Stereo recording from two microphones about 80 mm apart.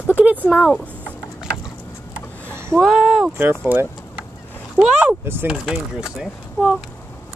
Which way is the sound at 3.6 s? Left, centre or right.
Right.